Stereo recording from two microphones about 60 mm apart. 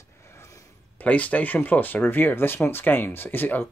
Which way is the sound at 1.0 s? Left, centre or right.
Left.